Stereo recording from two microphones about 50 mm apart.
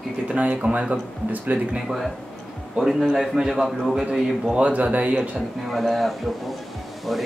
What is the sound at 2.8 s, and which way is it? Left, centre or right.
A man's voice, centre.